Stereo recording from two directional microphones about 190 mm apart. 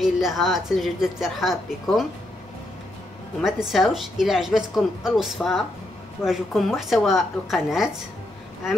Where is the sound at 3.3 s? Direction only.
Centre (ahead or behind).